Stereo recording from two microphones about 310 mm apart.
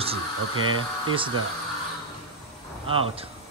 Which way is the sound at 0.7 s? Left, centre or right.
Centre.